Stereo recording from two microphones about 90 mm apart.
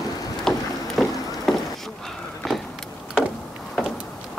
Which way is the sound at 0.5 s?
5° left (ahead or behind).